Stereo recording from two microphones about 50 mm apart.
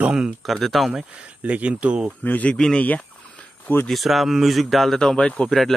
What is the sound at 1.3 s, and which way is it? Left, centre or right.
Speech, right.